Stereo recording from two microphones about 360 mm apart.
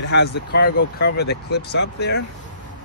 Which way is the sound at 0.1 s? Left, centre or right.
Left.